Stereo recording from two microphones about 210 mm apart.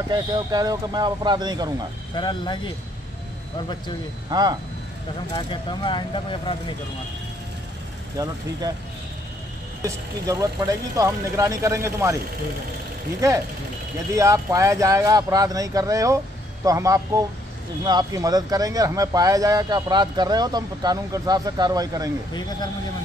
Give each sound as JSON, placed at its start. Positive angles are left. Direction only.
{"t": 0.1, "sound": "speech", "side_deg": -20}
{"t": 2.1, "sound": "speech", "side_deg": 20}
{"t": 4.3, "sound": "speech", "side_deg": -20}
{"t": 5.3, "sound": "speech", "side_deg": 20}
{"t": 8.2, "sound": "speech", "side_deg": -15}
{"t": 9.8, "sound": "speech", "side_deg": -15}
{"t": 14.1, "sound": "speech", "side_deg": -15}